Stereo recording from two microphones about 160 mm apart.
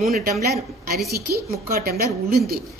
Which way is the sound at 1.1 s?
75° right (ahead or behind).